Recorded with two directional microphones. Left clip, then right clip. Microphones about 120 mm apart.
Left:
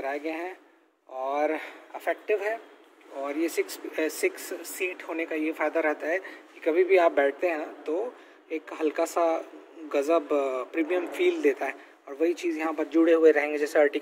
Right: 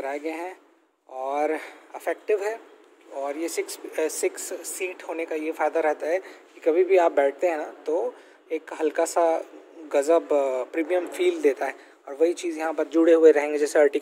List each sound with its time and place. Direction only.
0.0 s speech: 45° right (ahead or behind)
2.3 s speech: 30° right (ahead or behind); by 6.1 s 50° right (ahead or behind)
6.1 s speech: 30° right (ahead or behind); by 12.6 s 50° right (ahead or behind)
13.0 s speech: 30° right (ahead or behind)